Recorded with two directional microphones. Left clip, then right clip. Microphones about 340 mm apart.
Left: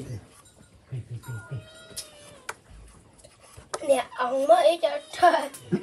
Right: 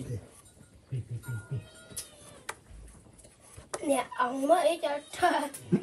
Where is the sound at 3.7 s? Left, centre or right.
Centre.